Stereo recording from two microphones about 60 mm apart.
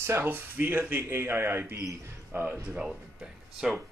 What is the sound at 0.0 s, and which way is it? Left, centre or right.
Speech, right.